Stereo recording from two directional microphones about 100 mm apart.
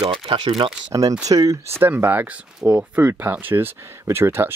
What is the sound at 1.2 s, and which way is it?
Speech, 35° right (ahead or behind).